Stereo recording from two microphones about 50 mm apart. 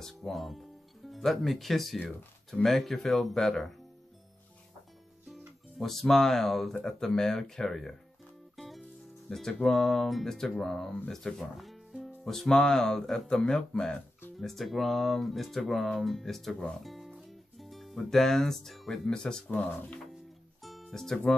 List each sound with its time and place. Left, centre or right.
0.0 s speech: centre
5.8 s speech: centre
8.5 s music: centre
9.3 s speech: centre
12.3 s speech: centre
14.4 s speech: centre
16.8 s music: centre
19.0 s speech: centre
19.5 s speech: left
20.6 s music: centre